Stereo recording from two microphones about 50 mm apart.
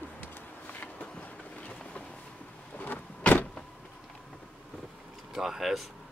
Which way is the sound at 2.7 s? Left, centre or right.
Left.